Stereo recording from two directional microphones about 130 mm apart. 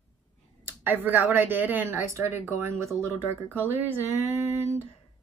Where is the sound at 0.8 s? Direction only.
15° right (ahead or behind).